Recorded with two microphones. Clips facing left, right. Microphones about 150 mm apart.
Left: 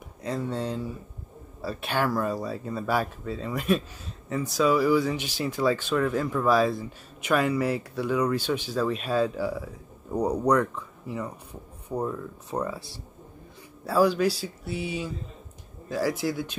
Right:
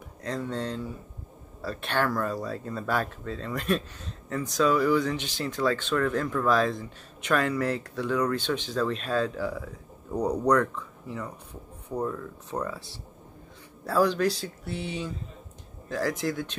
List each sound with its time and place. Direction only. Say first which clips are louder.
0.2 s speech: left 2 dB; 10° left (ahead or behind)